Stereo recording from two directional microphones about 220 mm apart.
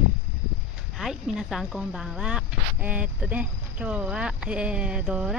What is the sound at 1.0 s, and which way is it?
Speech, centre (ahead or behind).